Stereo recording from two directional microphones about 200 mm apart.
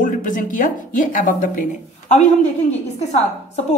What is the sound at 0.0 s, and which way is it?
Speech, 40° left (ahead or behind).